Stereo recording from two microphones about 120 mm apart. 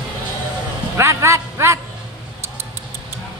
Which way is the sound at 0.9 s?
25° right (ahead or behind).